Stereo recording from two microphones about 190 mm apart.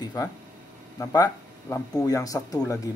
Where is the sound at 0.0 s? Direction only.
20° left (ahead or behind).